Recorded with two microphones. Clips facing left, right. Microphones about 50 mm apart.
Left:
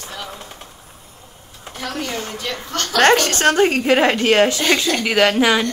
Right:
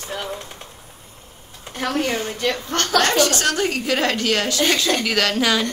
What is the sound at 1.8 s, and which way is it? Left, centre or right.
Speech, right.